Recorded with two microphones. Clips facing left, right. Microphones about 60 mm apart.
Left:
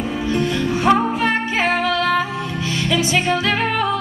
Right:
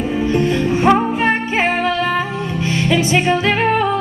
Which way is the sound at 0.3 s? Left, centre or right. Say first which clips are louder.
Right 3 dB; right.